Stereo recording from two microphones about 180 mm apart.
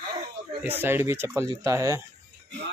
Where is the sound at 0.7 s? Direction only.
10° right (ahead or behind).